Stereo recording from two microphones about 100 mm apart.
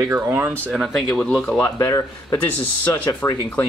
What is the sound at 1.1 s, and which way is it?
Speech, 5° left (ahead or behind).